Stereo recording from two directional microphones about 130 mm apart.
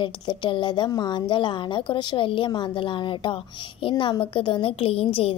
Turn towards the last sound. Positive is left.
turn(degrees=45)  # may be behind; listen again after turning